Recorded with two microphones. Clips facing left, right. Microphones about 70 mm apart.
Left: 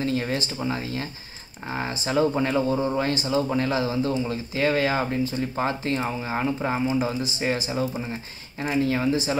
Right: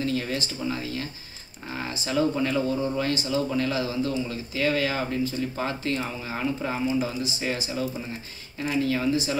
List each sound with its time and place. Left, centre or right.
0.0 s speech: left
8.5 s speech: left